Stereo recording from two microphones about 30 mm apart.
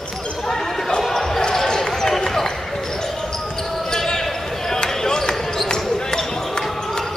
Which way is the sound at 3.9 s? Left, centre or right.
Centre.